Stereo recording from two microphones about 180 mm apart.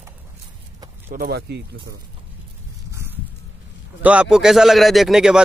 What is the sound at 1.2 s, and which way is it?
Speech, 65° right (ahead or behind).